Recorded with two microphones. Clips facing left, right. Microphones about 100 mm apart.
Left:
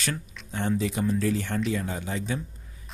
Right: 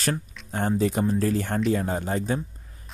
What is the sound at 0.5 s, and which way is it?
Speech, 40° right (ahead or behind).